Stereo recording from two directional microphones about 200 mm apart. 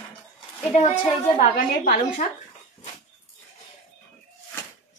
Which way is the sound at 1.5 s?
40° left (ahead or behind).